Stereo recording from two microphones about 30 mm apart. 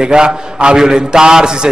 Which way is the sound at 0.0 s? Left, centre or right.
Right.